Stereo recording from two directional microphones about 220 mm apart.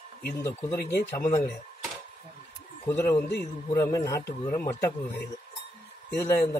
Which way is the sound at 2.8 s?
10° left (ahead or behind).